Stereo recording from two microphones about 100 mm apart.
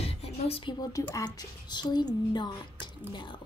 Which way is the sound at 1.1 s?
40° left (ahead or behind).